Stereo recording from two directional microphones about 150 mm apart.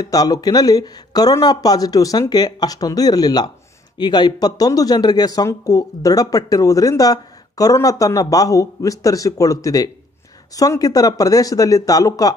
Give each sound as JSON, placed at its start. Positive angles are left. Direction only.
{"t": 0.0, "sound": "speech", "side_deg": 25}